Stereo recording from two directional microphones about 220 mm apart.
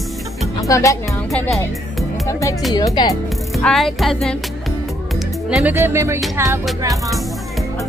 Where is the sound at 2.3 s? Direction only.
15° left (ahead or behind).